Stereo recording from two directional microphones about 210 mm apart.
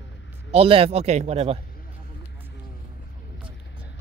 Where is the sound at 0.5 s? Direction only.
25° right (ahead or behind).